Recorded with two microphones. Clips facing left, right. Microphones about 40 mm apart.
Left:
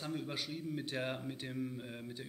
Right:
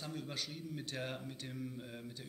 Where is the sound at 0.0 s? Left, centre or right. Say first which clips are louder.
Left 3 dB; centre.